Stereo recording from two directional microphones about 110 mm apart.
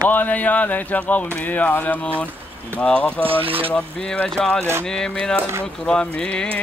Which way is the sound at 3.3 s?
55° right (ahead or behind).